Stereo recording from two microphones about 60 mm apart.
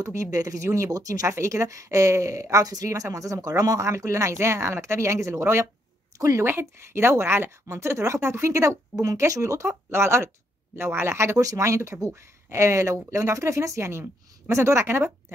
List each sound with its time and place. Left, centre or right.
0.0 s speech: right
0.7 s speech: right
1.2 s speech: right
2.5 s speech: right
6.1 s speech: right
6.4 s speech: right
11.4 s speech: right